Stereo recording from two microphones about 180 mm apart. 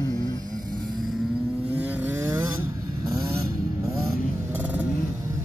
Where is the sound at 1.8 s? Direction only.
10° right (ahead or behind).